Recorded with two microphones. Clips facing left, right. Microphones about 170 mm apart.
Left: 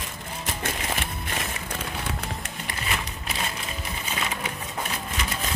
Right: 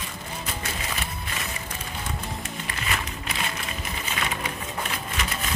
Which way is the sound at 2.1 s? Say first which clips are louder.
Left 1 dB; 70° left (ahead or behind).